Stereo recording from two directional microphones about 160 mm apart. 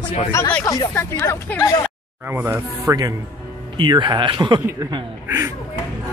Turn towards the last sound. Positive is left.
turn(degrees=-15)  # may be behind; listen again after turning